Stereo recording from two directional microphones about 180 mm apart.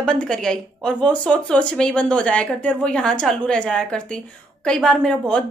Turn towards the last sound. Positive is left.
turn(degrees=5)  # may be behind; listen again after turning